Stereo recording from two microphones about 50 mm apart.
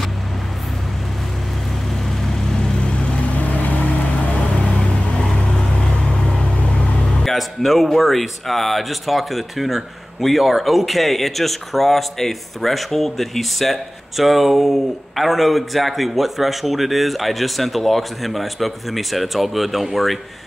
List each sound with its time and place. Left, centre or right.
3.3 s vehicle: left
4.7 s vehicle: centre
7.2 s speech: centre